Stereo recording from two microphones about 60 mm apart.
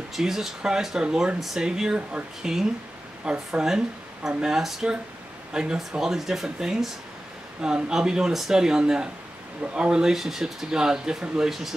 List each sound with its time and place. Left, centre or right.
0.1 s speech: centre